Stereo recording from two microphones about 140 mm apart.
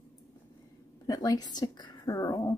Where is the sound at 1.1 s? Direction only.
25° left (ahead or behind).